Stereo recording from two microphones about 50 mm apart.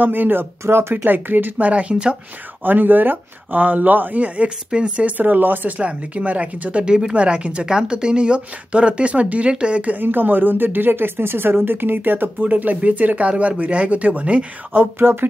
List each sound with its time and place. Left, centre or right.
0.0 s speech: right
0.9 s speech: right
2.6 s a woman's voice: right
5.1 s a woman's voice: right
5.8 s speech: right
10.0 s a woman's voice: right